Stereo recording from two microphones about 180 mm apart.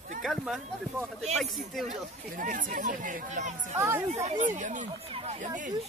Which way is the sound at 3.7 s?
15° right (ahead or behind).